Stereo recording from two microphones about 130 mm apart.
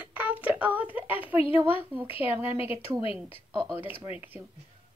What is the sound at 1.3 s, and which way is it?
A woman's voice, 45° left (ahead or behind).